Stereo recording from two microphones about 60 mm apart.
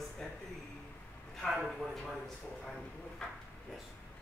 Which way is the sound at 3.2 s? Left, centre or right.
Centre.